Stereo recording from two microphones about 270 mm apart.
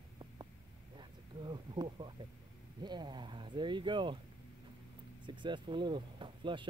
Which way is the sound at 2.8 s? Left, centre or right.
Centre.